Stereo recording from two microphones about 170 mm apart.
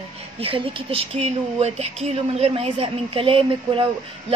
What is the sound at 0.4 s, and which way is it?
A woman's voice, 30° right (ahead or behind).